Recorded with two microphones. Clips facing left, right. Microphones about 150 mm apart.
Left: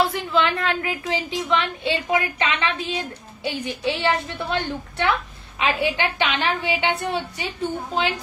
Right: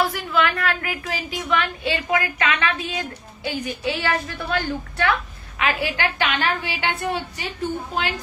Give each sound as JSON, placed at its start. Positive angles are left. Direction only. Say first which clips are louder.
{"t": 0.0, "sound": "a woman's voice", "louder": "left 1 dB", "side_deg": 25}